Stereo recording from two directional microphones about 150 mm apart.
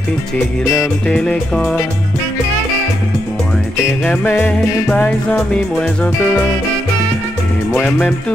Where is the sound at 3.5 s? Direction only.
10° left (ahead or behind).